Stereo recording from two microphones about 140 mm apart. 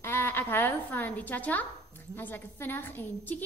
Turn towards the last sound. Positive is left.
turn(degrees=15)  # may be behind; listen again after turning